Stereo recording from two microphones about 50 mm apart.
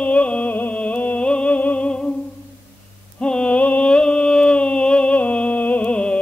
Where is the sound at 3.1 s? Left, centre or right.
Centre.